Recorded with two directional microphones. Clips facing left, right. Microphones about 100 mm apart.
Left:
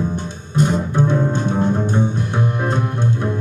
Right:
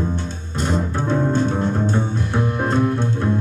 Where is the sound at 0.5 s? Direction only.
15° left (ahead or behind).